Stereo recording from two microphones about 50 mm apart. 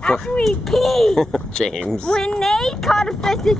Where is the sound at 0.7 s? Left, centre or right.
Centre.